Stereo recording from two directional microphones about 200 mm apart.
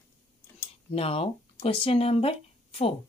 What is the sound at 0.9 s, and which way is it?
A woman's voice, 30° left (ahead or behind).